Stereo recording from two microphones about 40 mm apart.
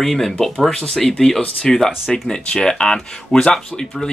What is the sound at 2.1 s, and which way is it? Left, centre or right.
Speech, centre.